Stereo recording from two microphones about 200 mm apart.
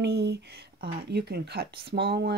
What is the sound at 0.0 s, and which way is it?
Speech, 55° right (ahead or behind).